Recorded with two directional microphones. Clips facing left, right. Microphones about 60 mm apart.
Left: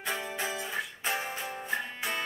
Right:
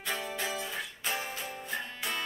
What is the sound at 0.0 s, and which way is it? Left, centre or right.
Music, centre.